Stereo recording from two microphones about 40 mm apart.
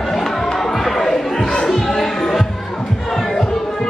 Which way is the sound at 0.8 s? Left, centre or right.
Centre.